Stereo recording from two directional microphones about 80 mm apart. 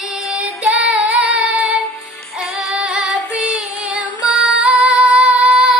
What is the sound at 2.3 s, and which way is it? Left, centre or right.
Music, centre.